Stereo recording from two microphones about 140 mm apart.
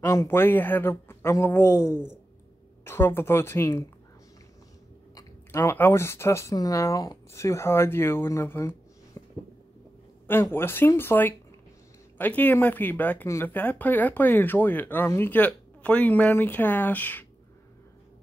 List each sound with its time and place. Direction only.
0.0 s speech: 20° left (ahead or behind)
1.9 s speech: 5° right (ahead or behind)
2.8 s speech: 15° left (ahead or behind)
5.1 s speech: 20° left (ahead or behind)
10.2 s speech: 15° left (ahead or behind)